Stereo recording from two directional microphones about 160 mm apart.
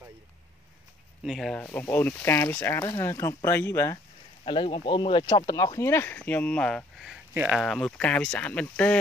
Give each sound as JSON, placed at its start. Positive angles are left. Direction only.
{"t": 1.2, "sound": "speech", "side_deg": 0}
{"t": 1.6, "sound": "speech", "side_deg": 10}
{"t": 4.5, "sound": "speech", "side_deg": 30}